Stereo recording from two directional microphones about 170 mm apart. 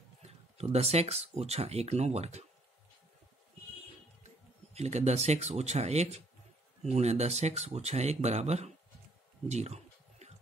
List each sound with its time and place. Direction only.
0.2 s speech: 35° right (ahead or behind)
4.7 s speech: 40° right (ahead or behind)
9.5 s a sound: 40° right (ahead or behind)